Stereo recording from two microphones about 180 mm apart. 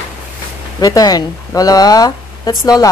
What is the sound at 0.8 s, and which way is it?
Speech, 20° left (ahead or behind).